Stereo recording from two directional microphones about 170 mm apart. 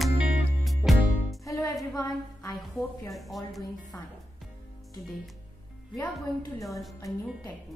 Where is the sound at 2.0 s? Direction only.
20° left (ahead or behind).